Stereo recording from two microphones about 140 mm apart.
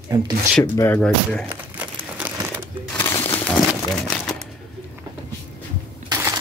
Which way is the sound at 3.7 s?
Centre (ahead or behind).